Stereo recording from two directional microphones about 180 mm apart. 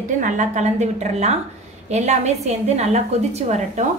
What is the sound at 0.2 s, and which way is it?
A woman's voice, 40° right (ahead or behind).